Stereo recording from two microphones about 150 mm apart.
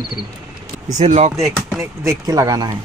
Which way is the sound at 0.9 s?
50° right (ahead or behind).